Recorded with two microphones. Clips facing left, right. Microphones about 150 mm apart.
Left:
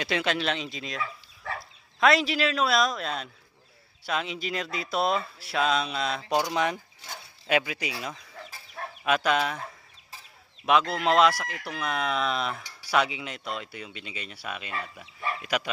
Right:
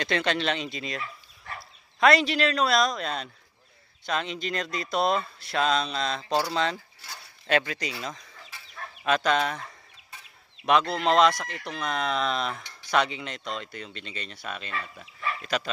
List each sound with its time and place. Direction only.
0.0 s speech: 5° left (ahead or behind)
8.5 s chicken: 40° left (ahead or behind)
9.0 s speech: 5° left (ahead or behind)